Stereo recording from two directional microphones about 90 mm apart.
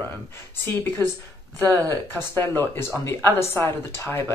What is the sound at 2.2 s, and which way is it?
Speech, 25° left (ahead or behind).